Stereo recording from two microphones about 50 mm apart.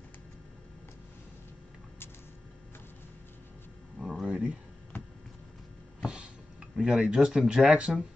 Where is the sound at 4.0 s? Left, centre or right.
Centre.